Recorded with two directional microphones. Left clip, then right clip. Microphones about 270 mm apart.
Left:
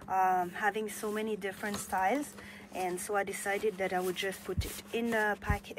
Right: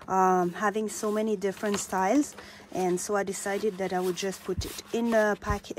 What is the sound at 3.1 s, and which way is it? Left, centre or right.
Speech, centre.